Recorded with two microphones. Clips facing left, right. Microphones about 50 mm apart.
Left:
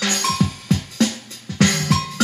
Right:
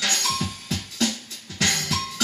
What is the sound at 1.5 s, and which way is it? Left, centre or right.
Music, left.